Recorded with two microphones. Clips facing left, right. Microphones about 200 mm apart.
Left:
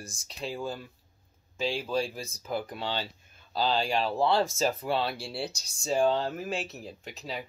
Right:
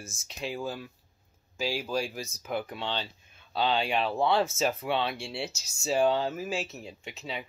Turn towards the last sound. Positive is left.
turn(degrees=0)  # may be behind; listen again after turning